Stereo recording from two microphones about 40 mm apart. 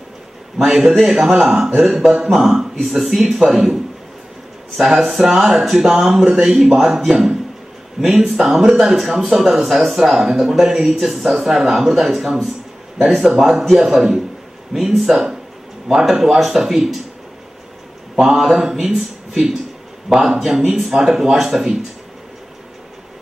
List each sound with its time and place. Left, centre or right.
0.6 s a man's voice: centre
18.2 s speech: centre